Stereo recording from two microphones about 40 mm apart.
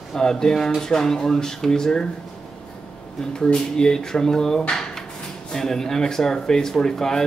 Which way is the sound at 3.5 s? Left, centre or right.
Centre.